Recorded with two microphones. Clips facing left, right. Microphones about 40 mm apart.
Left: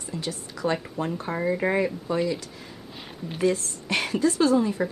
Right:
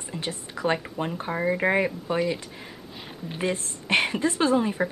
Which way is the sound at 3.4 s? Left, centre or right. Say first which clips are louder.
Left 4 dB; right.